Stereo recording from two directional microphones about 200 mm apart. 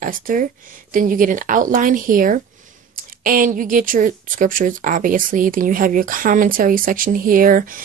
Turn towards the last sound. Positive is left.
turn(degrees=-45)  # may be behind; listen again after turning